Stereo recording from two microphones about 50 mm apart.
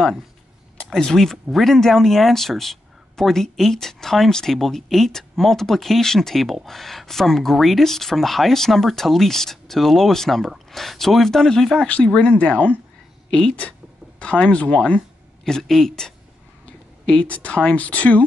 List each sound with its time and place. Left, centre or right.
0.9 s speech: centre
15.4 s speech: centre
17.1 s speech: left